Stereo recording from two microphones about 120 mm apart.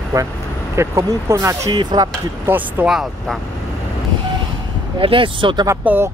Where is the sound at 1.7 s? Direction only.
40° right (ahead or behind).